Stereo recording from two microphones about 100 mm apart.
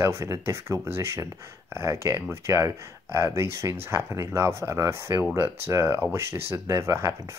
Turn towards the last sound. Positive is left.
turn(degrees=-30)  # may be behind; listen again after turning